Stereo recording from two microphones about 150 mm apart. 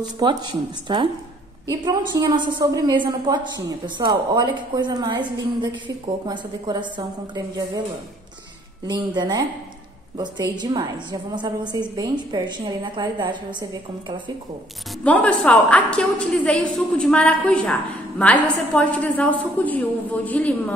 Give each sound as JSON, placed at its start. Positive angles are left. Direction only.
{"t": 0.0, "sound": "a woman's voice", "side_deg": -25}
{"t": 8.8, "sound": "a woman's voice", "side_deg": -30}
{"t": 15.0, "sound": "a woman's voice", "side_deg": 10}